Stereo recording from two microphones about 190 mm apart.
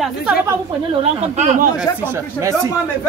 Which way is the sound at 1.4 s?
40° right (ahead or behind).